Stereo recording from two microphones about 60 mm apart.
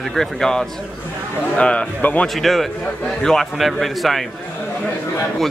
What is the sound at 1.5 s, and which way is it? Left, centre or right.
Speech, left.